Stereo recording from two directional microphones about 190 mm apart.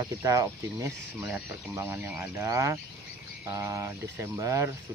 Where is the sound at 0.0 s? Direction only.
15° right (ahead or behind).